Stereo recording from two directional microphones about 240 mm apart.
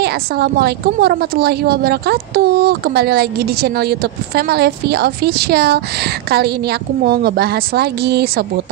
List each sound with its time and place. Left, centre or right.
0.0 s a woman's voice: right